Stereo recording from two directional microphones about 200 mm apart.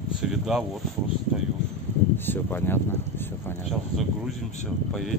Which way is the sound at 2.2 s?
10° left (ahead or behind).